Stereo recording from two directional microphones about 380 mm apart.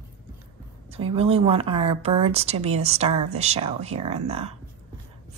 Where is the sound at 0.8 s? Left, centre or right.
Centre.